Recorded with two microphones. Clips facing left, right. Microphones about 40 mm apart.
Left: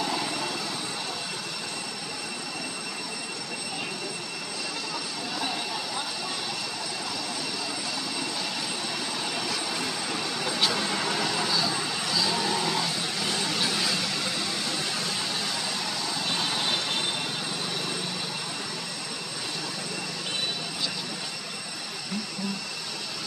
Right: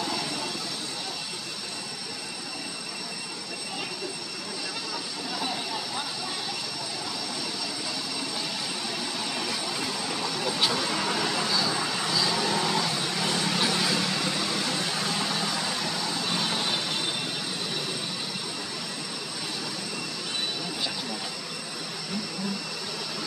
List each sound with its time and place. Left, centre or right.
0.0 s vehicle: centre
10.4 s vehicle: centre
16.3 s vehicle: centre